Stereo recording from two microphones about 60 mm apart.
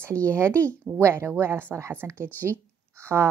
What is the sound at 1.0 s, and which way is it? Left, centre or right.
A woman's voice, right.